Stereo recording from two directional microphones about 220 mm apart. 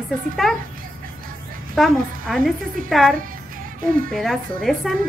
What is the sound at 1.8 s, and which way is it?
A woman's voice, centre (ahead or behind).